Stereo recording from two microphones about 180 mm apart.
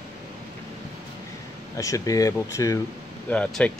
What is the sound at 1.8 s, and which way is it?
Speech, 20° left (ahead or behind).